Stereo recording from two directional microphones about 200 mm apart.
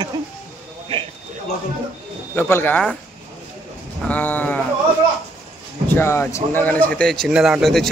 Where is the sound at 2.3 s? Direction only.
10° left (ahead or behind).